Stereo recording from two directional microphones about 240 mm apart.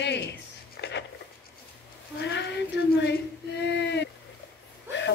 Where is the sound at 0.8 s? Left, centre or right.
Left.